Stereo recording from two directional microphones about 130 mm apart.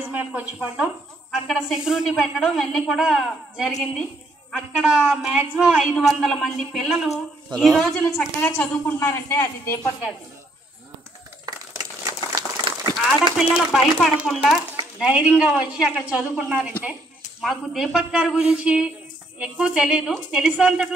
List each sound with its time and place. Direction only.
0.1 s a woman's voice: 10° right (ahead or behind); by 8.5 s 5° left (ahead or behind)
8.5 s a woman's voice: 15° left (ahead or behind)
11.4 s crumpling: 30° right (ahead or behind)
13.4 s a woman's voice: 5° right (ahead or behind)